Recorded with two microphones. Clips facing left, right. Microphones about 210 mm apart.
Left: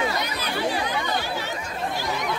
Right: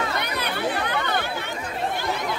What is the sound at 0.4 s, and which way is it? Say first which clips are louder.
Chatter: even; 60° right (ahead or behind).